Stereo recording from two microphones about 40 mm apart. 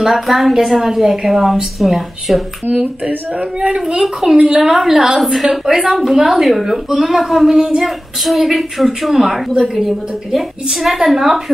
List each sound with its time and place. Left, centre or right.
0.0 s a woman's voice: centre
3.5 s a woman's voice: centre
4.0 s a woman's voice: centre
5.2 s a woman's voice: centre
7.8 s a woman's voice: centre